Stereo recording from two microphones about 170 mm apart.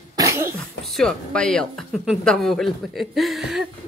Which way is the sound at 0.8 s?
Centre (ahead or behind).